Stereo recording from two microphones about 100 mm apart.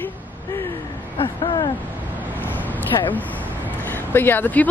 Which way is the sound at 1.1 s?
55° left (ahead or behind).